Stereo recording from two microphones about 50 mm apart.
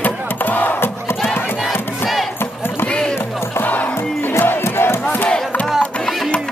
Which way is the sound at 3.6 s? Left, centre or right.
Left.